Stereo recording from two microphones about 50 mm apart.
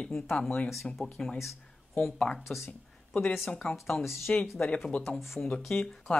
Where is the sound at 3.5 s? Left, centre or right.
Left.